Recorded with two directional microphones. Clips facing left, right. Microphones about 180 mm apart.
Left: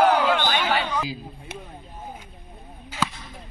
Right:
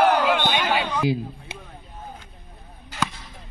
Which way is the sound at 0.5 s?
10° right (ahead or behind).